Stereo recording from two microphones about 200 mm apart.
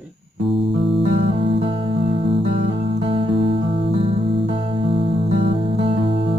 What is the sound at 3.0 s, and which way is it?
Music, 25° right (ahead or behind).